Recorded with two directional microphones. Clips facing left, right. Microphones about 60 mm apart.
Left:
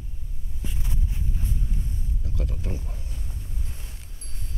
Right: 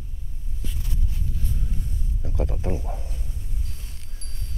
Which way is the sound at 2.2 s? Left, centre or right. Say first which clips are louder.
Right 7 dB; right.